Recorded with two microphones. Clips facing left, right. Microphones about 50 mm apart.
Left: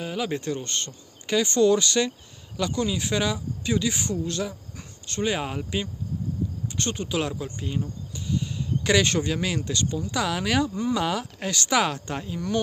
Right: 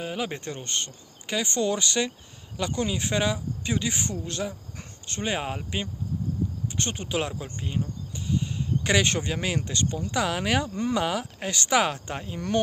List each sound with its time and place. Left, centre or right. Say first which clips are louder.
0.0 s speech: left 3 dB; right
6.8 s speech: left 2 dB; right
8.3 s a sound: even; right
9.6 s speech: left 1 dB; right
10.2 s speech: left 2 dB; centre